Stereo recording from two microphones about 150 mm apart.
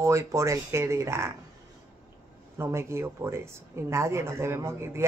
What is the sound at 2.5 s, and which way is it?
Speech, 15° right (ahead or behind).